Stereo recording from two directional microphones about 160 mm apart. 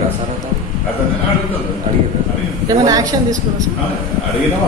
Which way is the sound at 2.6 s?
20° right (ahead or behind).